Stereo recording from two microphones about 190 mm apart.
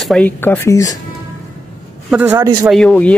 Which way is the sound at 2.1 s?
10° right (ahead or behind).